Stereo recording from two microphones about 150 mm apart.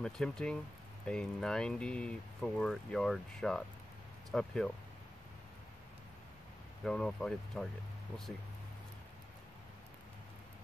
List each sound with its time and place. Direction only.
0.0 s speech: 5° left (ahead or behind)
6.8 s speech: 5° left (ahead or behind)